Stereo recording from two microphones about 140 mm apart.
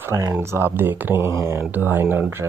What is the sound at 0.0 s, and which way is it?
Speech, 20° right (ahead or behind).